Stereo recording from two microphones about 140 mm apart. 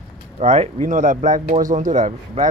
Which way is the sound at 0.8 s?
70° right (ahead or behind).